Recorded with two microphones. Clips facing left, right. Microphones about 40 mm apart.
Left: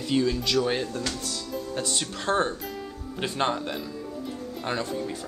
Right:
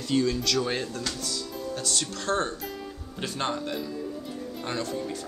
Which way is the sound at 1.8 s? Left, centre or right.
Left.